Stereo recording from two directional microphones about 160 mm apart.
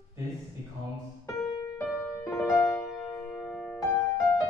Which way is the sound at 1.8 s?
15° left (ahead or behind).